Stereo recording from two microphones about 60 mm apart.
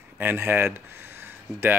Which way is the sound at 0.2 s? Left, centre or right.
Right.